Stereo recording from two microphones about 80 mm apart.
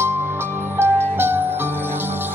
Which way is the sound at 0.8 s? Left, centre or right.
Right.